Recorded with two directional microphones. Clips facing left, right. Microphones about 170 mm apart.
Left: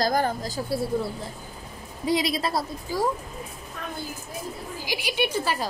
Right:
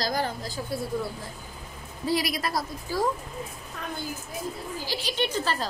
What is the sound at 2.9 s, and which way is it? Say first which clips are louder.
Speech: left 1 dB; 15° left (ahead or behind).